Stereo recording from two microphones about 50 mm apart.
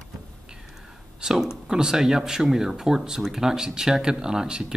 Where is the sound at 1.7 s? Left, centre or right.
Centre.